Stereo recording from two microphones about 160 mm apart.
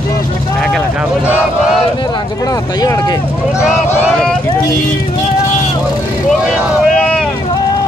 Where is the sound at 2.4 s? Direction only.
20° left (ahead or behind).